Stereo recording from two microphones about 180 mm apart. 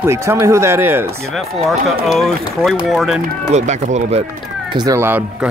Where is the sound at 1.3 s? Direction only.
Centre (ahead or behind).